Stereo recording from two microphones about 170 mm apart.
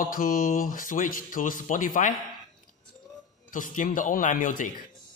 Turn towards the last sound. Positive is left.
turn(degrees=50)  # may be behind; listen again after turning